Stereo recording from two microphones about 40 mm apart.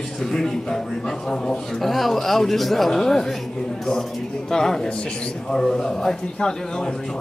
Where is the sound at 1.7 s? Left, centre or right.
Centre.